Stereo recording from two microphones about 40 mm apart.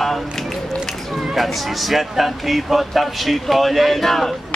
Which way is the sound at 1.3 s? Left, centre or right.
Centre.